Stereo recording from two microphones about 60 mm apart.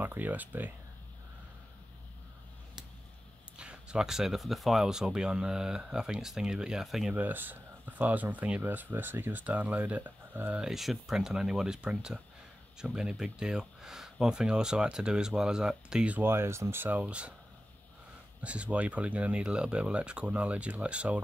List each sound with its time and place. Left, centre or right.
0.0 s speech: right
3.5 s speech: centre
7.2 s speech: right
10.7 s speech: centre
16.2 s speech: right
17.0 s speech: centre
18.4 s speech: right